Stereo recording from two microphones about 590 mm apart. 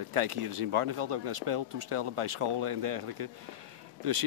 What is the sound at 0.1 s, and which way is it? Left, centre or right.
Speech, right.